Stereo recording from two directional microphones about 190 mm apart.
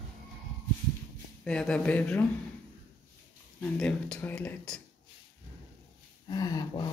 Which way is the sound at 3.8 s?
5° left (ahead or behind).